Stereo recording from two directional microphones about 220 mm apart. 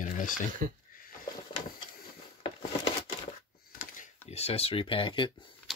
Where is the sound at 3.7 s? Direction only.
35° left (ahead or behind).